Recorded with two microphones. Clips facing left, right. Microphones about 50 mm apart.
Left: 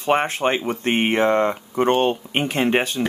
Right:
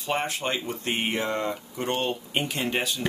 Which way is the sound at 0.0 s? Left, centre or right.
Left.